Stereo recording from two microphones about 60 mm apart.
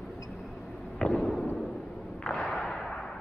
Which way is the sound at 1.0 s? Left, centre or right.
Centre.